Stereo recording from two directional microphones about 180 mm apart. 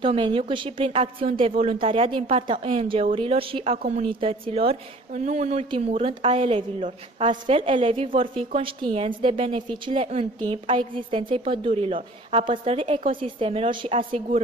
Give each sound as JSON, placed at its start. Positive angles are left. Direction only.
{"t": 0.0, "sound": "speech", "side_deg": -30}